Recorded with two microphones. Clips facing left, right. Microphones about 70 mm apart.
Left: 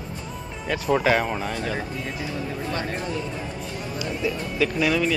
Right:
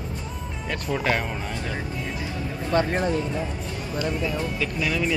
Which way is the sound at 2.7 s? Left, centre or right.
Right.